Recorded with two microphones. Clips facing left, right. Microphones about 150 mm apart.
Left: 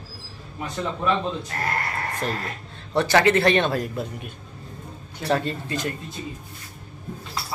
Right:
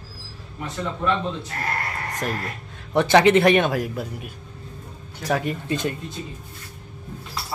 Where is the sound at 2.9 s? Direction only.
20° right (ahead or behind).